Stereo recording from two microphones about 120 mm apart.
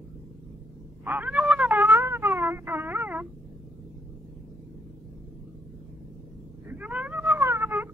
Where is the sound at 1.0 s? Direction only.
15° right (ahead or behind).